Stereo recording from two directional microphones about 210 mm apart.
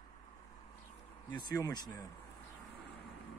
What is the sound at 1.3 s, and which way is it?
Speech, 20° left (ahead or behind).